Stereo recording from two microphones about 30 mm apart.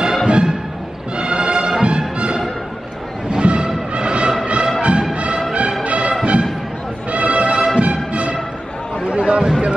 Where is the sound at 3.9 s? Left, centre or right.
Right.